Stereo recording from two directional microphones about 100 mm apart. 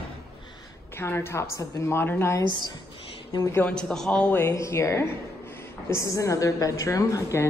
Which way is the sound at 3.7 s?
5° left (ahead or behind).